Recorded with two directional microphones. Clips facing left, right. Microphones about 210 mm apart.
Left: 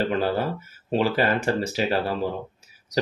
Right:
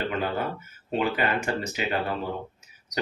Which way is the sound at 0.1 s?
35° left (ahead or behind).